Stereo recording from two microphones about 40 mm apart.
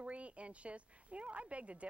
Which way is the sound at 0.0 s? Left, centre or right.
Right.